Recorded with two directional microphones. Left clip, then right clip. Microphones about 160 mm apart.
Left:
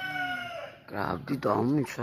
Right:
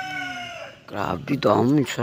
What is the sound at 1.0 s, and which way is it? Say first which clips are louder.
Speech: right 7 dB; 10° right (ahead or behind).